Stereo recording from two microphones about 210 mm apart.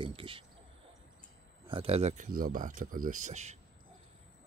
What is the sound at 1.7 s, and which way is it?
Speech, 25° right (ahead or behind).